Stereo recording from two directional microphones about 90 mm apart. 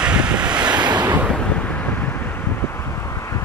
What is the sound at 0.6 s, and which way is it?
Waves, 50° right (ahead or behind).